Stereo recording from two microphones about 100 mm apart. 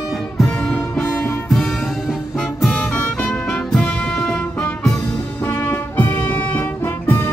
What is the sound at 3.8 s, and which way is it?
Music, 5° left (ahead or behind).